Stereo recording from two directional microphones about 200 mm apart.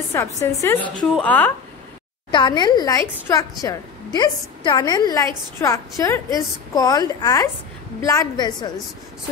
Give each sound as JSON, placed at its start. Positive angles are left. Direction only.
{"t": 0.4, "sound": "a woman's voice", "side_deg": 15}
{"t": 2.3, "sound": "a woman's voice", "side_deg": 20}